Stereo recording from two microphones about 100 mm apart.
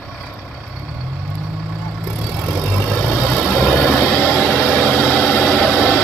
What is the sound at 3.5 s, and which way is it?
Vehicle, 20° left (ahead or behind).